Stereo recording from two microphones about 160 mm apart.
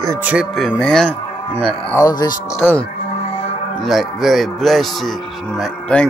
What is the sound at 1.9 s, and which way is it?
Speech, 25° left (ahead or behind).